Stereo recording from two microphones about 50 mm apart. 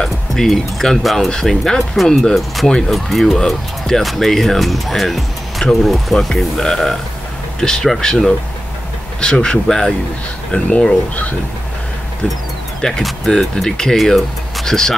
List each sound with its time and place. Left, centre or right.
0.0 s speech: centre
12.8 s speech: centre
13.4 s speech: centre